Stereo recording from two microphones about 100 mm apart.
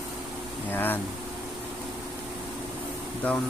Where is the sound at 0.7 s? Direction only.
20° left (ahead or behind).